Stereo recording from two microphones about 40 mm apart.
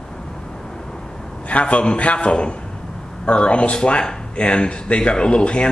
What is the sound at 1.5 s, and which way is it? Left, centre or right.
A man's voice, left.